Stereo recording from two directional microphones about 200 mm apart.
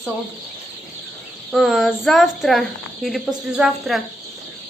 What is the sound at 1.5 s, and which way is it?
Speech, centre (ahead or behind).